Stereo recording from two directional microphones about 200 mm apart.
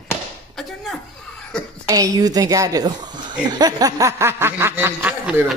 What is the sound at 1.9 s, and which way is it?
A woman's voice, 20° right (ahead or behind).